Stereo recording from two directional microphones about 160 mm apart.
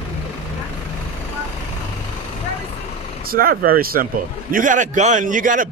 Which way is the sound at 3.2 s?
65° right (ahead or behind).